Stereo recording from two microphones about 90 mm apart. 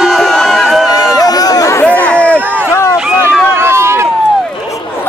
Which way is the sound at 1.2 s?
45° left (ahead or behind).